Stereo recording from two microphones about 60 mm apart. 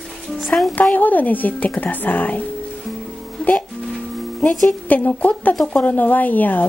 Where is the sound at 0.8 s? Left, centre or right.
Left.